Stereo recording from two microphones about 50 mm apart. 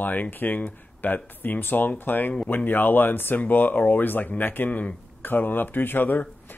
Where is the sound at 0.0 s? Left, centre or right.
Left.